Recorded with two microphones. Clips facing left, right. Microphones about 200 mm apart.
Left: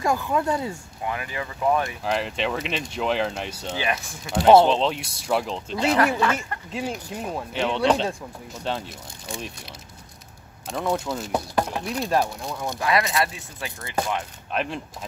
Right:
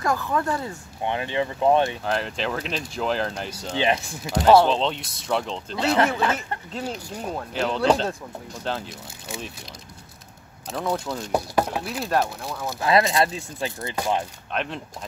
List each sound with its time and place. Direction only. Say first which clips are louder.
0.1 s speech: left 1 dB; 15° left (ahead or behind)
1.0 s speech: right 5 dB; 25° right (ahead or behind)
2.0 s speech: left 1 dB; centre (ahead or behind)
3.7 s speech: right 6 dB; 25° right (ahead or behind)
4.6 s speech: left 1 dB; centre (ahead or behind)
5.9 s speech: even; 25° right (ahead or behind)
6.7 s speech: left 3 dB; 10° left (ahead or behind)
10.7 s speech: left 1 dB; centre (ahead or behind)
12.8 s speech: right 4 dB; 25° right (ahead or behind)
14.5 s speech: left 2 dB; 5° left (ahead or behind)